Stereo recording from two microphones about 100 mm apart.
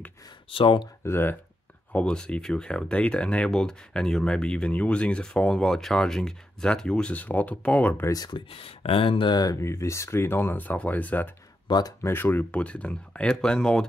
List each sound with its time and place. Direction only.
0.5 s speech: 60° left (ahead or behind)
1.0 s speech: 25° left (ahead or behind)
1.9 s speech: 10° left (ahead or behind)
8.1 s speech: 40° left (ahead or behind)
8.4 s speech: 70° left (ahead or behind); by 9.6 s 45° left (ahead or behind)
9.6 s speech: 30° left (ahead or behind)
11.6 s a sound: 45° left (ahead or behind)
12.0 s speech: 20° left (ahead or behind)